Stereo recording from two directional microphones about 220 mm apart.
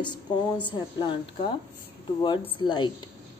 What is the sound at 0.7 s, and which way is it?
Speech, 20° left (ahead or behind).